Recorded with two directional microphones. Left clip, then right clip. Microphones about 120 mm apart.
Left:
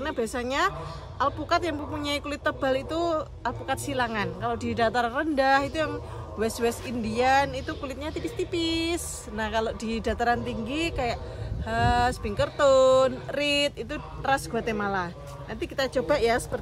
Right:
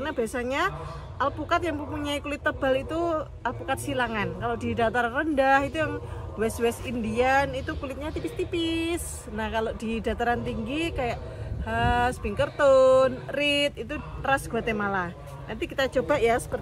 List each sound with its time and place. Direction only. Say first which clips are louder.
0.0 s speech: right 1 dB; 25° left (ahead or behind)